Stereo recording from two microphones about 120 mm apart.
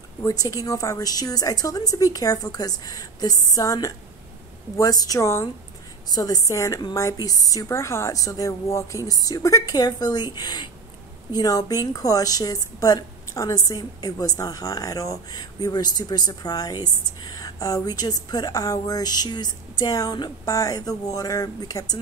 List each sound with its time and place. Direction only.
0.2 s a woman's voice: 30° left (ahead or behind)